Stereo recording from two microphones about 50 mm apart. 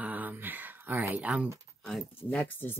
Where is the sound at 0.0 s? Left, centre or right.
Right.